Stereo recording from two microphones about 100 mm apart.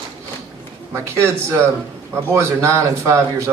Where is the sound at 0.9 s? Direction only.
25° right (ahead or behind).